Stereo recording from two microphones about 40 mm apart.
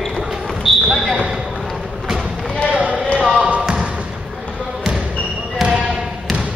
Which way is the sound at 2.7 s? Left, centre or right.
Right.